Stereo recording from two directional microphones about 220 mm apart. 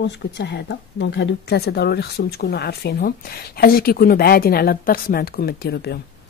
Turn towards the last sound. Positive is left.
turn(degrees=45)  # may be behind; listen again after turning